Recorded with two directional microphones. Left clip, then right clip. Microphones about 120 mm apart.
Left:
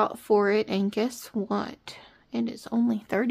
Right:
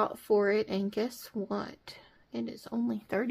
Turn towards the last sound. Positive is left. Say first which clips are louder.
# left 6 dB
turn(degrees=30)  # may be behind; listen again after turning